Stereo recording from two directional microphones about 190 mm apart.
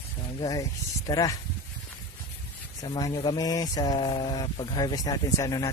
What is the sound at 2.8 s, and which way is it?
Speech, 20° left (ahead or behind).